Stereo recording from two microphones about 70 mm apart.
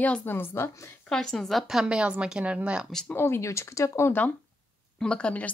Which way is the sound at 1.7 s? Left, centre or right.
Centre.